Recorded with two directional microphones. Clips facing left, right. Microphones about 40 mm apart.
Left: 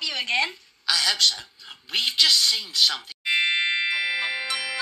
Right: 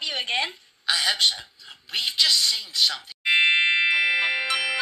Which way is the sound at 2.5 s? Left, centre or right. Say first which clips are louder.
Left 1 dB; left.